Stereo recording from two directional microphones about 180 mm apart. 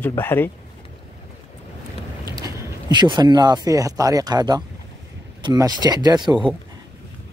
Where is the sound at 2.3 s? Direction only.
25° right (ahead or behind).